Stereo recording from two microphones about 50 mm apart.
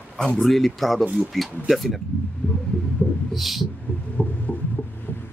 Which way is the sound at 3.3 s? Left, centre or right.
Centre.